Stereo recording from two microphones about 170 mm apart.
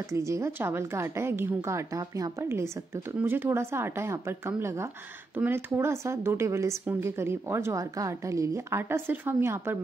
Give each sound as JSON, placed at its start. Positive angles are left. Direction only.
{"t": 0.1, "sound": "speech", "side_deg": -15}